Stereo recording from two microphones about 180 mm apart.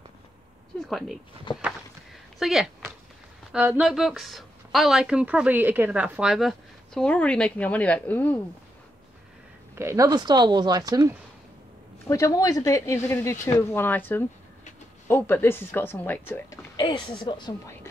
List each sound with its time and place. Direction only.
0.7 s a woman's voice: centre (ahead or behind)
1.5 s speech: 25° left (ahead or behind)
2.3 s a woman's voice: centre (ahead or behind)
9.8 s speech: 15° right (ahead or behind)
12.1 s speech: 20° left (ahead or behind)
16.7 s speech: 25° left (ahead or behind)